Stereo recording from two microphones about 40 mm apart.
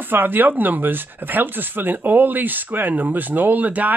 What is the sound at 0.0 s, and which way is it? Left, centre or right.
Speech, right.